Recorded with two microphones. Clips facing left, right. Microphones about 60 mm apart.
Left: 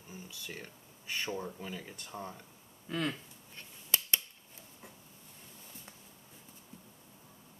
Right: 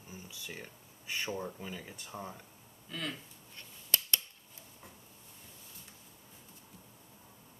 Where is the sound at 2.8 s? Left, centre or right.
Left.